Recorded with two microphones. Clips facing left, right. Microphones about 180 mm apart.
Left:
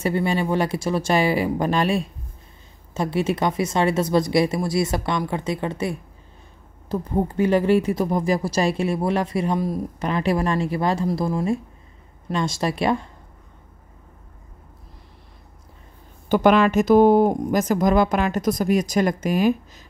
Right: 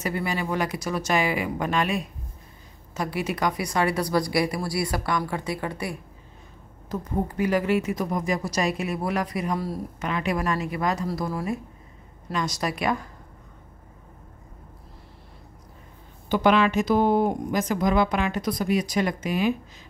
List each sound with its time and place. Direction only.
0.0 s speech: 30° left (ahead or behind)
9.9 s speech: 35° left (ahead or behind)
16.3 s speech: 45° left (ahead or behind)